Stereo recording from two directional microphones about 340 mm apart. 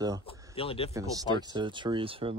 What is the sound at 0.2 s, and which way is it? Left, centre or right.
Speech, centre.